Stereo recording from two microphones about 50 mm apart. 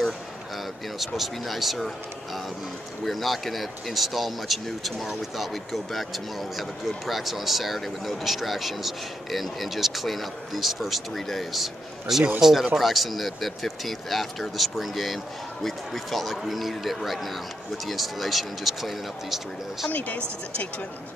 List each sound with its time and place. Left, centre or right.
0.9 s speech: centre
3.1 s speech: centre
19.9 s speech: left